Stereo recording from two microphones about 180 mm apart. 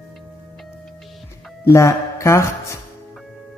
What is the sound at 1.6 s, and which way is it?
Speech, 15° left (ahead or behind).